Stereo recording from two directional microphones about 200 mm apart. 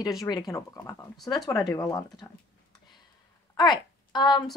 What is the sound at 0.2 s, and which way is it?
Speech, 20° left (ahead or behind).